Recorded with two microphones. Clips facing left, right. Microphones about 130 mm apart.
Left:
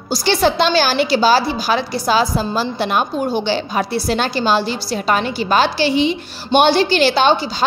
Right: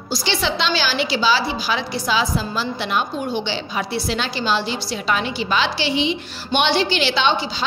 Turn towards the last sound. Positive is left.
turn(degrees=45)  # may be behind; listen again after turning